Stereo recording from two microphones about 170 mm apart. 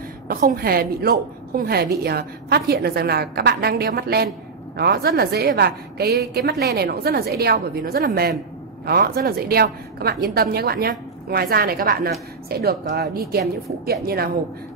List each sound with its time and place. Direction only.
0.6 s a woman's voice: 65° right (ahead or behind)